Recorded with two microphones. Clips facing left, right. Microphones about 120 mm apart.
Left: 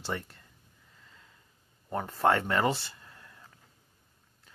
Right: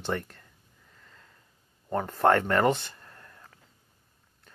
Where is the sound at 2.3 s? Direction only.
10° left (ahead or behind).